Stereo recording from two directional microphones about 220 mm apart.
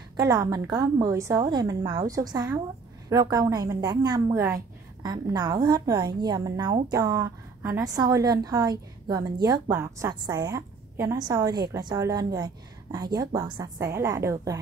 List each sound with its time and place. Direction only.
0.2 s a woman's voice: 15° right (ahead or behind)